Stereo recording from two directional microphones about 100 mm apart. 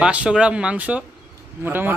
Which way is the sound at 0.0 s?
10° right (ahead or behind).